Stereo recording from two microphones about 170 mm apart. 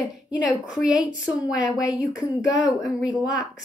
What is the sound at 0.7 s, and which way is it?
A woman's voice, 5° right (ahead or behind).